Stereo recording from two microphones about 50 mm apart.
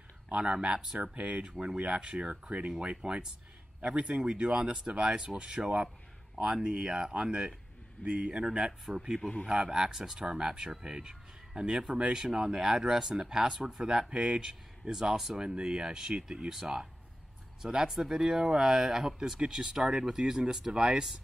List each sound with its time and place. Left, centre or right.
0.3 s speech: centre